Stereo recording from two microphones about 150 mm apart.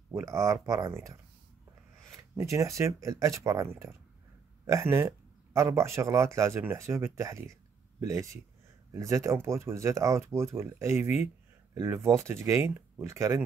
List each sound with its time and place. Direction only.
0.1 s speech: 20° right (ahead or behind)
2.1 s speech: 20° right (ahead or behind)